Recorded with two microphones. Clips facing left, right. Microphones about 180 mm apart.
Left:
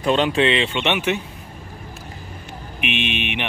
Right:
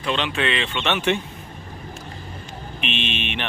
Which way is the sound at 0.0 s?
45° left (ahead or behind).